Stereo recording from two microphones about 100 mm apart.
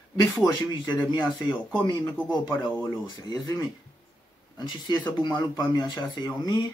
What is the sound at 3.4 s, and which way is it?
Speech, 35° left (ahead or behind).